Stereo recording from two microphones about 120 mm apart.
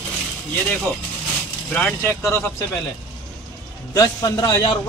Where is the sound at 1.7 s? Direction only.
15° left (ahead or behind).